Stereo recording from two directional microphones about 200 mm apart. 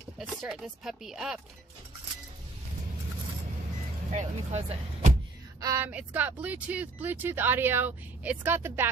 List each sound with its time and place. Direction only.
0.2 s speech: centre (ahead or behind)
4.1 s speech: 35° right (ahead or behind)
5.6 s speech: 15° right (ahead or behind)